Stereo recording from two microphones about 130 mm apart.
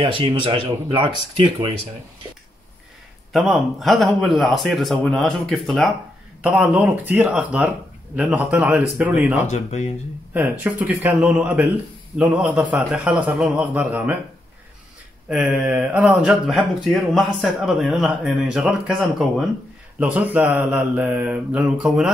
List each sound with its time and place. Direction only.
0.0 s speech: 40° right (ahead or behind)
3.3 s mantra: centre (ahead or behind)
6.4 s speech: 5° right (ahead or behind)
9.5 s speech: 60° left (ahead or behind)
10.3 s speech: 15° right (ahead or behind)
15.5 s mantra: 10° right (ahead or behind)
20.0 s speech: 10° right (ahead or behind)